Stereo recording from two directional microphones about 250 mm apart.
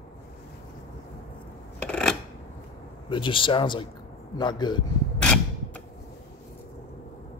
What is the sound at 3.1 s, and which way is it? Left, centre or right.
Speech, centre.